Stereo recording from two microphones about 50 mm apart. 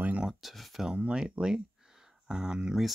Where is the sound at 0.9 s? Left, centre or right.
Right.